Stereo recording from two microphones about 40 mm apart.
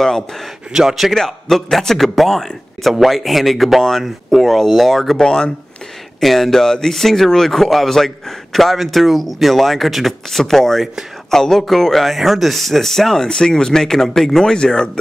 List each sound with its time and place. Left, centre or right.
0.0 s speech: centre
0.7 s a man's voice: centre
1.1 s speech: centre
5.2 s speech: centre
6.2 s speech: centre